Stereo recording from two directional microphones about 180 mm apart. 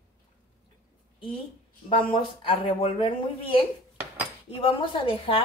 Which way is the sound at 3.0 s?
30° left (ahead or behind).